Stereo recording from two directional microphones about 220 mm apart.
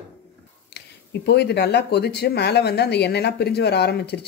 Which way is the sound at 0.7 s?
50° left (ahead or behind).